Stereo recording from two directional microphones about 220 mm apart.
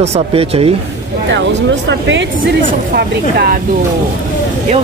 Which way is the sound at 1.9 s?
55° right (ahead or behind).